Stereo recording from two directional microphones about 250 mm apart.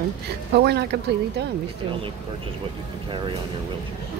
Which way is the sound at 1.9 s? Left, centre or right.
Right.